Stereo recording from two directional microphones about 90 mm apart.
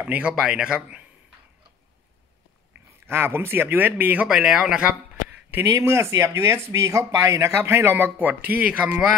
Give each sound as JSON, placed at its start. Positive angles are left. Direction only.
{"t": 0.0, "sound": "speech", "side_deg": -15}
{"t": 3.1, "sound": "speech", "side_deg": -25}
{"t": 5.7, "sound": "speech", "side_deg": -30}
{"t": 7.5, "sound": "speech", "side_deg": -25}